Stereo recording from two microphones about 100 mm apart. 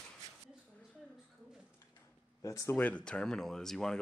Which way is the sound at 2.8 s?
15° left (ahead or behind).